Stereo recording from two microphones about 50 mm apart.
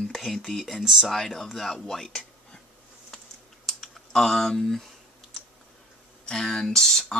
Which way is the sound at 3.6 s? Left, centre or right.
Centre.